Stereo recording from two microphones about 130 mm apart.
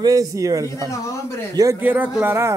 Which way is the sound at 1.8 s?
15° right (ahead or behind).